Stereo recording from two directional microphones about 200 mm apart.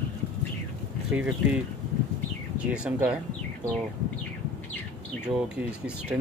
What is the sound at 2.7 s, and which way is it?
Speech, 5° right (ahead or behind).